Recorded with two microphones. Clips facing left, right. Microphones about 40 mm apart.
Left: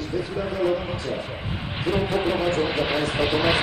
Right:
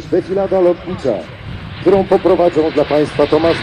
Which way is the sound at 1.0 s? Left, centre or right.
Right.